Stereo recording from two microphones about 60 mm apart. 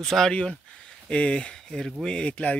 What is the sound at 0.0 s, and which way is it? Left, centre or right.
Speech, centre.